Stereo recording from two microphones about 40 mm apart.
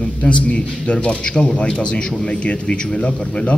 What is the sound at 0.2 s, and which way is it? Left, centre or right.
A man's voice, left.